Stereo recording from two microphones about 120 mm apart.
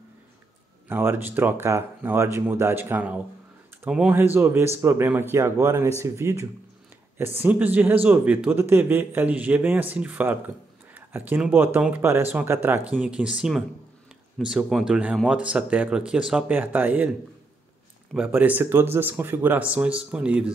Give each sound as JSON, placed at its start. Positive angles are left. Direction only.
{"t": 0.8, "sound": "speech", "side_deg": -20}
{"t": 18.1, "sound": "speech", "side_deg": -10}